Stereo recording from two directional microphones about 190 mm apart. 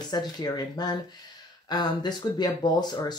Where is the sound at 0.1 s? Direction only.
20° left (ahead or behind).